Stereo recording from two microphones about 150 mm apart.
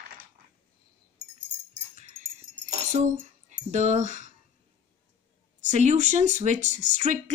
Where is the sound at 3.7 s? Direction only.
50° right (ahead or behind).